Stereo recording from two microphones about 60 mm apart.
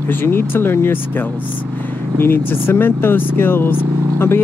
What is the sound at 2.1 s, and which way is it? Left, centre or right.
Speech, left.